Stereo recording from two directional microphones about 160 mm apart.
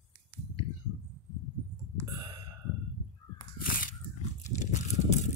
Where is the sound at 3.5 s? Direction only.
60° left (ahead or behind).